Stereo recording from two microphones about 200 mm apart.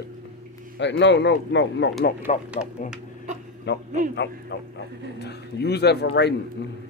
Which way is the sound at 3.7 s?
60° left (ahead or behind).